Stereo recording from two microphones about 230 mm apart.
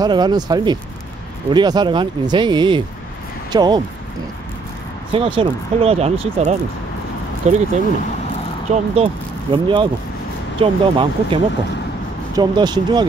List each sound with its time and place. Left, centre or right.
0.0 s speech: centre
5.1 s speech: right
8.7 s speech: right